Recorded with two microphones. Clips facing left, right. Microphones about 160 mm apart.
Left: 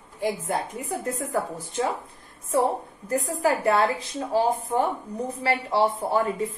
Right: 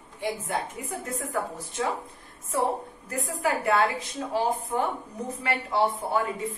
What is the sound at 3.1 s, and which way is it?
A woman's voice, 35° left (ahead or behind).